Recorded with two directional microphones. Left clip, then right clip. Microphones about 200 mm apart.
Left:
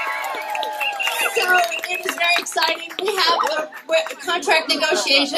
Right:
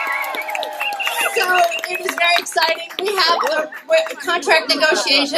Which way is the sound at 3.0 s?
25° right (ahead or behind).